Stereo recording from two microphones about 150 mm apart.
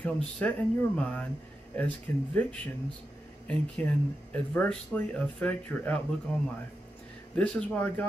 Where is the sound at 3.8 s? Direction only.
15° left (ahead or behind).